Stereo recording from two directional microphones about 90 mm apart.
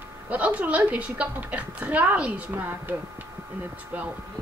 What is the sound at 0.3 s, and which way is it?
A woman's voice, 15° right (ahead or behind).